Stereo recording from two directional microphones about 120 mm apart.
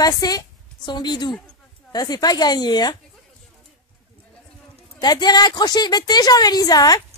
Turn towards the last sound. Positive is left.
turn(degrees=30)  # may be behind; listen again after turning